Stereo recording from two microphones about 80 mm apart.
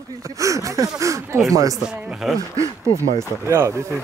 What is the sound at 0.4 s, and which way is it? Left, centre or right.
Speech, right.